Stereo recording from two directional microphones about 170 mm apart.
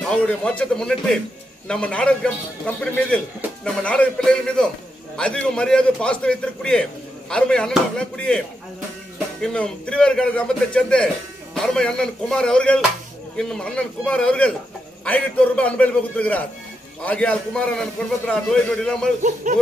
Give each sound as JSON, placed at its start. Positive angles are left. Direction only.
{"t": 0.1, "sound": "a man's voice", "side_deg": 5}
{"t": 9.4, "sound": "a man's voice", "side_deg": 5}
{"t": 19.4, "sound": "a sound", "side_deg": -45}